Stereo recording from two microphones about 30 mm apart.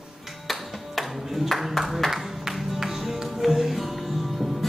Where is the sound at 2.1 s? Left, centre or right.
Centre.